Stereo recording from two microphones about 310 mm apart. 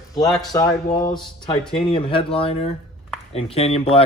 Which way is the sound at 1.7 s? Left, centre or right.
Centre.